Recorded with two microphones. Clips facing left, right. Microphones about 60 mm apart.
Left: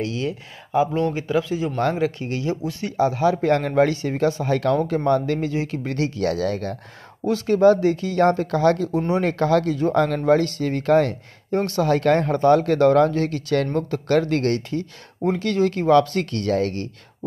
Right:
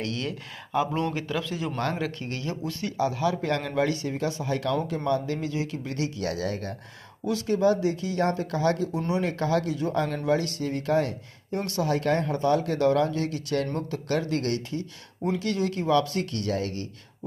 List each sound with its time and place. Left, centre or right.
0.0 s speech: centre
1.8 s speech: left
2.8 s speech: left
6.4 s speech: left
7.2 s speech: left
8.9 s speech: left
9.2 s speech: left
15.2 s speech: left